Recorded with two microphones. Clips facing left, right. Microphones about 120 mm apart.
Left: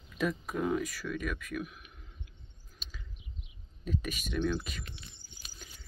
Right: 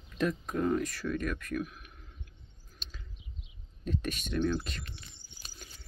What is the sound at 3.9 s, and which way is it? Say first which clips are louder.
Speech: right 1 dB; 5° left (ahead or behind).